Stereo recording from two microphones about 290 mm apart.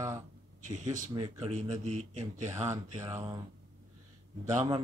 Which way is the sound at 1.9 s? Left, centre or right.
Right.